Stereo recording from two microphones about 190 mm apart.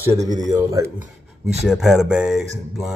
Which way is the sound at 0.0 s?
15° right (ahead or behind).